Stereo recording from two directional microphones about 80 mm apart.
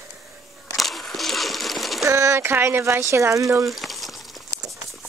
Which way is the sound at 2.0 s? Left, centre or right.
Right.